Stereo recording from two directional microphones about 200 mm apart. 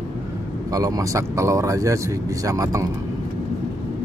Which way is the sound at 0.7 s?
20° right (ahead or behind).